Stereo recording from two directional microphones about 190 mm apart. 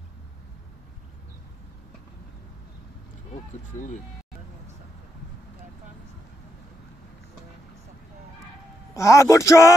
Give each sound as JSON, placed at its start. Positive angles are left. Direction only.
{"t": 3.7, "sound": "speech", "side_deg": 40}
{"t": 8.9, "sound": "speech", "side_deg": 15}